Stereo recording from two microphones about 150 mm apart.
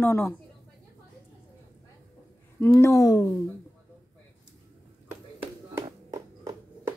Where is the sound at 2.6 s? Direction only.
20° left (ahead or behind).